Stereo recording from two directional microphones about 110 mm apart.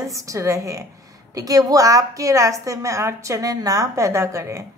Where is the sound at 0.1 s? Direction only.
30° right (ahead or behind).